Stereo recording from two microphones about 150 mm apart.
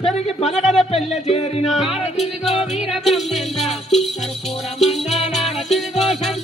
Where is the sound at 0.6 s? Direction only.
Centre (ahead or behind).